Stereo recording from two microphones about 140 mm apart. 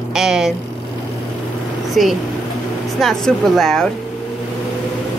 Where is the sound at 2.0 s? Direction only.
Centre (ahead or behind).